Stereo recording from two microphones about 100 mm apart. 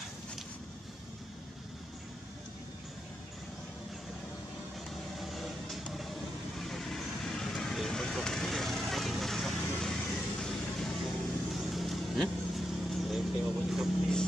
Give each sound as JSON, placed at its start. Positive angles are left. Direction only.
{"t": 4.8, "sound": "vehicle", "side_deg": 0}